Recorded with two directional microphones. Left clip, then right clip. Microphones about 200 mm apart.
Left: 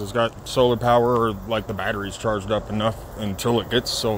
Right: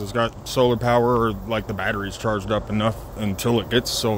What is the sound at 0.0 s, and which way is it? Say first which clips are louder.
Speech: left 1 dB; 15° right (ahead or behind).